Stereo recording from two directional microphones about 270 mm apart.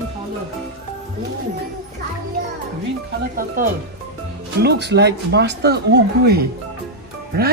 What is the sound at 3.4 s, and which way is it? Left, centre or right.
Speech, right.